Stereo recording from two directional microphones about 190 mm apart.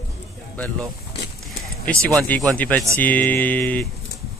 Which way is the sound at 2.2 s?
10° left (ahead or behind).